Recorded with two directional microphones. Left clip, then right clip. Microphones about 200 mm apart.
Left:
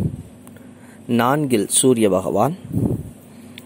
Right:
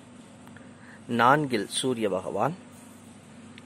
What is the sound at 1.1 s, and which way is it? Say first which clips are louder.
Speech: left 4 dB; 20° left (ahead or behind).